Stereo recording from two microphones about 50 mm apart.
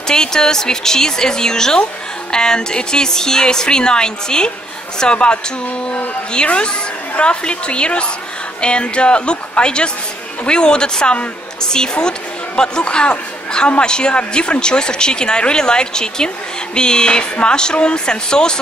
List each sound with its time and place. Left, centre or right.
0.1 s a woman's voice: centre